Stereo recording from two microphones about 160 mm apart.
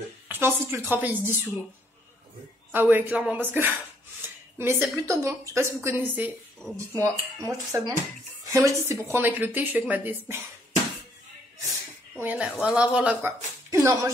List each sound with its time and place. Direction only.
0.3 s a woman's voice: 15° right (ahead or behind)
2.7 s a woman's voice: 10° right (ahead or behind)
12.2 s a woman's voice: 10° right (ahead or behind)